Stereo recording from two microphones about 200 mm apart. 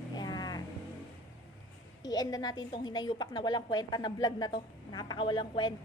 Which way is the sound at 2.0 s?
20° left (ahead or behind).